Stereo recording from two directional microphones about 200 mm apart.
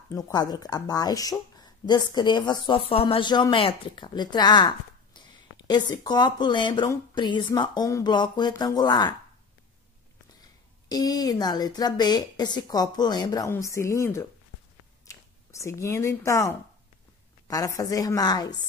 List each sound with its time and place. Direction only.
0.1 s speech: 20° left (ahead or behind)
10.9 s a woman's voice: 20° left (ahead or behind)